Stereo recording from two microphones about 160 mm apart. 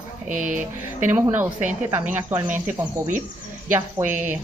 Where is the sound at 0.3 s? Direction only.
55° right (ahead or behind).